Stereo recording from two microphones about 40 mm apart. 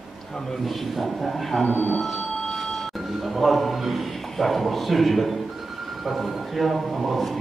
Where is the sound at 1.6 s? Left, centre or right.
Left.